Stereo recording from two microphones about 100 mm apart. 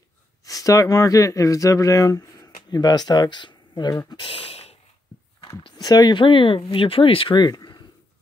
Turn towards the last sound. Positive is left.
turn(degrees=45)  # may be behind; listen again after turning